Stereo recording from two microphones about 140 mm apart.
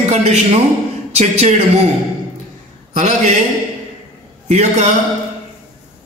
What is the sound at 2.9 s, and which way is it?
Speech, 55° right (ahead or behind).